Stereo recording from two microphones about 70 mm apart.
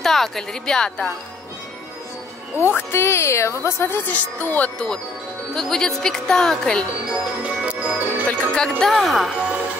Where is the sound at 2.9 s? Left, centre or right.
Left.